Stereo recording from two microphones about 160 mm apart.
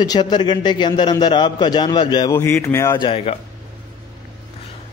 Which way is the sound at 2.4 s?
15° left (ahead or behind).